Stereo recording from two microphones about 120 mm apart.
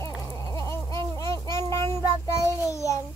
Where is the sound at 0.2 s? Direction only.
25° left (ahead or behind).